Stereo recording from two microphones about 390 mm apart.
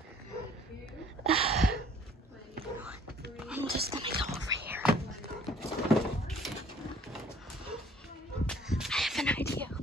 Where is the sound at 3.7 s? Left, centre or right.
Centre.